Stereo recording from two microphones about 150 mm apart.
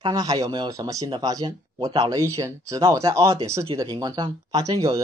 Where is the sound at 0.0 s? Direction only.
25° right (ahead or behind).